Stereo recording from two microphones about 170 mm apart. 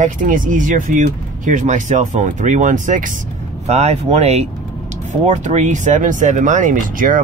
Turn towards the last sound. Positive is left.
turn(degrees=-50)  # may be behind; listen again after turning